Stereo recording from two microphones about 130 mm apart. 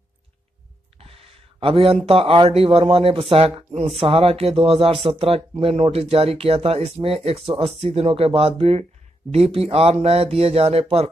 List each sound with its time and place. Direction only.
1.6 s speech: 45° right (ahead or behind)